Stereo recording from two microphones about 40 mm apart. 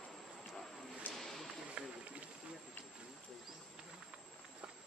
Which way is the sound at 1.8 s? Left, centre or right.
Right.